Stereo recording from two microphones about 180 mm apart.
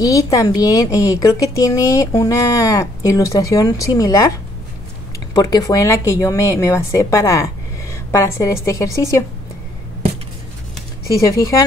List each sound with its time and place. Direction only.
0.0 s speech: 20° left (ahead or behind)
5.3 s speech: 20° left (ahead or behind)
11.1 s speech: 20° left (ahead or behind)